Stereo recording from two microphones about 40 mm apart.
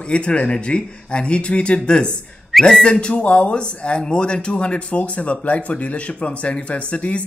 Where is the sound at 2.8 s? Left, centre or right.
Left.